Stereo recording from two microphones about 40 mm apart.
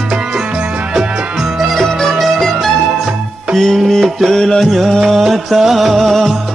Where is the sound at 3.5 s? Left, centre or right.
Centre.